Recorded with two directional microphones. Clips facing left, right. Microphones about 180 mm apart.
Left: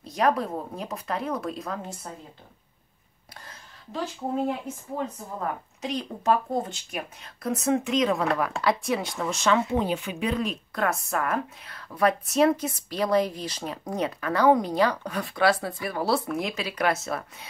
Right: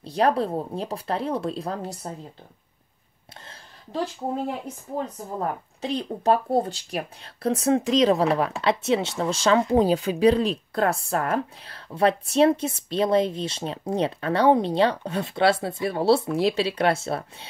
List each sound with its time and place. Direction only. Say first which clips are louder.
0.0 s speech: right 2 dB; 30° right (ahead or behind)
3.4 s a sound: left 1 dB; 30° right (ahead or behind)
5.0 s speech: right 4 dB; 35° right (ahead or behind)